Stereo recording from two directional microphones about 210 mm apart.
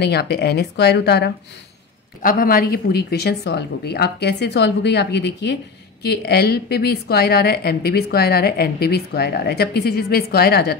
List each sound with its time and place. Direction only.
0.0 s a woman's voice: 50° left (ahead or behind)